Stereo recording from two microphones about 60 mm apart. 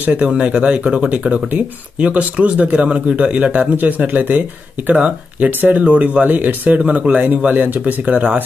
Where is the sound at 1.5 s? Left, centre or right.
Right.